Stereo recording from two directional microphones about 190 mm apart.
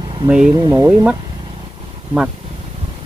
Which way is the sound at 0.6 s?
20° right (ahead or behind).